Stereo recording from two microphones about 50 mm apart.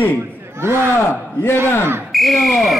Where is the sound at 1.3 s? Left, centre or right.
Left.